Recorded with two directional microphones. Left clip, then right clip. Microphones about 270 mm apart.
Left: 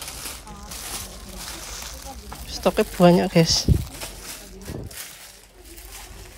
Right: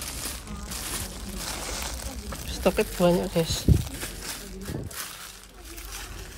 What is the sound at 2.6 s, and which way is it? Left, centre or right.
Speech, centre.